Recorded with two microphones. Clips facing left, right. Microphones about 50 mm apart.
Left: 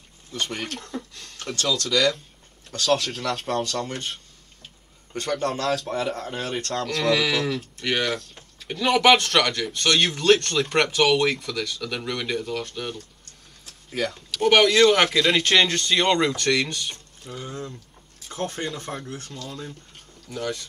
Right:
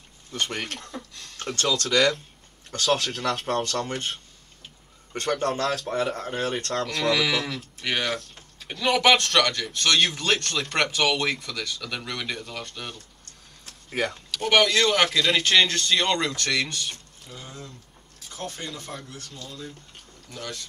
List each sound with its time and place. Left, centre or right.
0.3 s a man's voice: right
0.7 s a sound: centre
1.4 s a man's voice: right
3.0 s speech: right
3.4 s a man's voice: right
5.1 s a man's voice: right
5.7 s speech: centre
6.2 s speech: centre
7.0 s speech: centre
13.2 s a sound: right
14.1 s speech: centre
17.3 s speech: centre
18.3 s speech: left
20.2 s speech: centre